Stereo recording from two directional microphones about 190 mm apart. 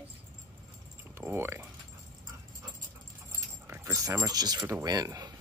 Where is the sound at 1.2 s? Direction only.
10° right (ahead or behind).